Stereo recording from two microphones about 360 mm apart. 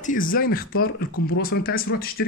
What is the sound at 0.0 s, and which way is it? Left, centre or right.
A man's voice, left.